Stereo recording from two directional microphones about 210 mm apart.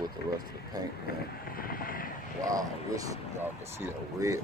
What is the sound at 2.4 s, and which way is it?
Speech, 15° right (ahead or behind).